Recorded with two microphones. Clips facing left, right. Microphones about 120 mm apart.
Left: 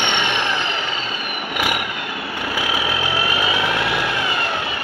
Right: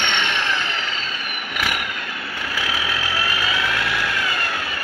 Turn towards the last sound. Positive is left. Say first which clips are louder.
# left 3 dB
turn(degrees=20)  # may be behind; listen again after turning